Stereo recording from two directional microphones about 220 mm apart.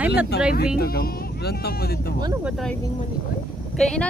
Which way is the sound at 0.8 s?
45° left (ahead or behind).